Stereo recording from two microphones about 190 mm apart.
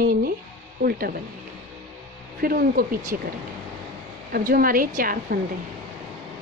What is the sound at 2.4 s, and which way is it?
Speech, 50° right (ahead or behind).